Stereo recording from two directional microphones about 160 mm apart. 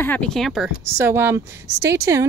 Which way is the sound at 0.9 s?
15° right (ahead or behind).